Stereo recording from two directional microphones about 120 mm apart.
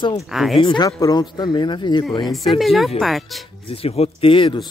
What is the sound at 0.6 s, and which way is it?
Speech, 40° left (ahead or behind).